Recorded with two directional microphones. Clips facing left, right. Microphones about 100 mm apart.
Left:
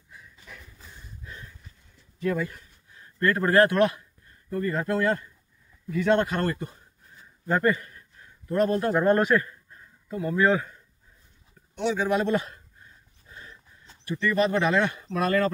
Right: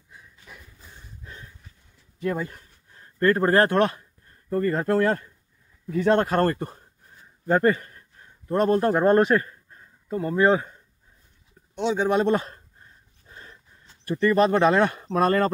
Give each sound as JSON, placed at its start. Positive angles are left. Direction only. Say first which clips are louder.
{"t": 2.1, "sound": "speech", "louder": "even", "side_deg": -25}
{"t": 7.4, "sound": "a man's voice", "louder": "right 3 dB", "side_deg": -35}
{"t": 13.3, "sound": "dog", "louder": "even", "side_deg": -40}
{"t": 14.0, "sound": "speech", "louder": "right 5 dB", "side_deg": -40}